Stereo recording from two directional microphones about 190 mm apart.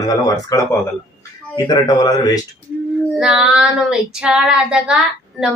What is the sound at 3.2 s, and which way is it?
Child singing, 5° right (ahead or behind).